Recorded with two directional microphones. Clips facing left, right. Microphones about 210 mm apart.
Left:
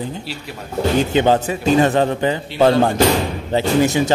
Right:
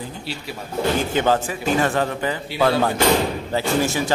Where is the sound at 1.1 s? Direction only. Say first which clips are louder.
Left 4 dB; 20° left (ahead or behind).